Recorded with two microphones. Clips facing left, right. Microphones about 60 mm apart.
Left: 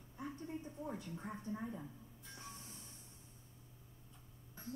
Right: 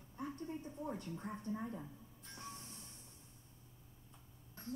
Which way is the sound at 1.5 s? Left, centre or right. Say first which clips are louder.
Right 1 dB; centre.